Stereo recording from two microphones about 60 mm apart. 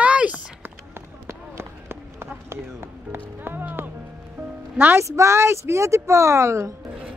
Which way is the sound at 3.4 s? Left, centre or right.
Right.